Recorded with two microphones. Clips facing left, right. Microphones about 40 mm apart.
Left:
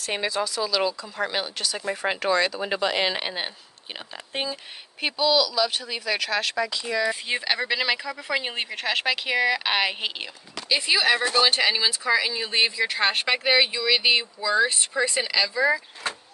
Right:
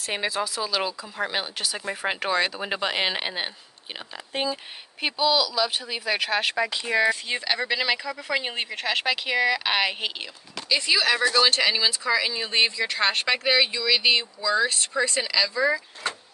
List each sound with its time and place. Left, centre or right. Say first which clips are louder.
0.0 s speech: left 1 dB; centre
4.3 s speech: right 2 dB; centre
5.0 s speech: left 1 dB; centre; by 7.1 s right
7.1 s speech: right 1 dB; centre
11.4 s speech: even; centre